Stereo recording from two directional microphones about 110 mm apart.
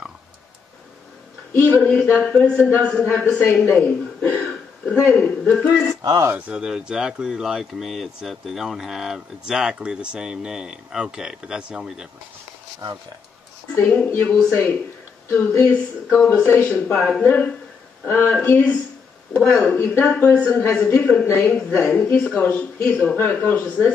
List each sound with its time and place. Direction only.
1.5 s speech: 15° left (ahead or behind)
4.4 s a sound: 10° left (ahead or behind)
4.9 s speech: centre (ahead or behind)
6.2 s speech: 10° right (ahead or behind)
13.7 s speech: 15° left (ahead or behind)
16.8 s speech: 5° left (ahead or behind)